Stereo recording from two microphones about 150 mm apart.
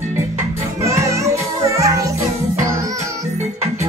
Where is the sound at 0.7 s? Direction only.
20° right (ahead or behind).